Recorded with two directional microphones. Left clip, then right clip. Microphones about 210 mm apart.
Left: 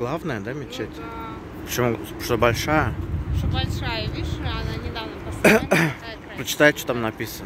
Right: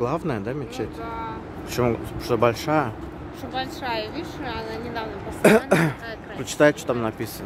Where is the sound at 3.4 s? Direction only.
35° right (ahead or behind).